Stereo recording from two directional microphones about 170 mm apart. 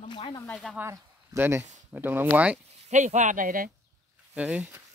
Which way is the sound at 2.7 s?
45° right (ahead or behind).